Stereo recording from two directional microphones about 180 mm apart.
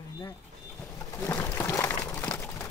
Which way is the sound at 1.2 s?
15° left (ahead or behind).